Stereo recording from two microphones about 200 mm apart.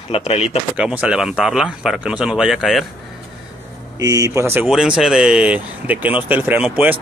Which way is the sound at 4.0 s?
15° right (ahead or behind).